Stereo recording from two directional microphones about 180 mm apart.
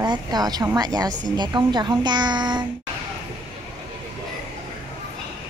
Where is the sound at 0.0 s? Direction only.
20° right (ahead or behind).